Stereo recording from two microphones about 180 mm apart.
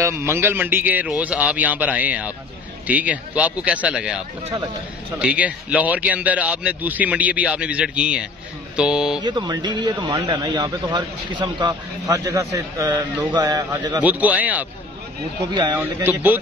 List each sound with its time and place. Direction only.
0.0 s a man's voice: 15° right (ahead or behind)
5.2 s a man's voice: 5° right (ahead or behind)
9.2 s speech: 25° right (ahead or behind)
14.0 s a man's voice: 10° right (ahead or behind)
15.5 s speech: 25° right (ahead or behind)
15.8 s a man's voice: 10° right (ahead or behind)